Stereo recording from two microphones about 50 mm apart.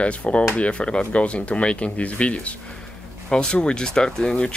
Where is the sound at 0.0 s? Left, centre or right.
Left.